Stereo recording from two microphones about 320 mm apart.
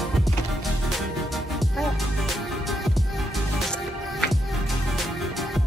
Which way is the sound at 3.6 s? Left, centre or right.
Centre.